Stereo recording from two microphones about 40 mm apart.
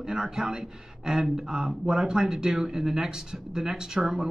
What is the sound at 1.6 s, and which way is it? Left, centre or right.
Speech, right.